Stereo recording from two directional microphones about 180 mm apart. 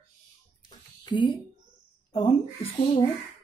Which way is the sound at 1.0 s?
25° left (ahead or behind).